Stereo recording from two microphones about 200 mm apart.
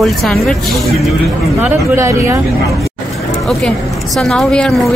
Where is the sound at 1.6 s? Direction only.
15° right (ahead or behind).